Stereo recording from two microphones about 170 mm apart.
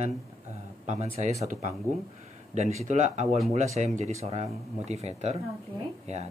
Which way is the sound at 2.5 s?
45° right (ahead or behind).